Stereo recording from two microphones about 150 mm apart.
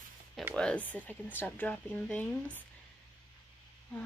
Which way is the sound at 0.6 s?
5° left (ahead or behind).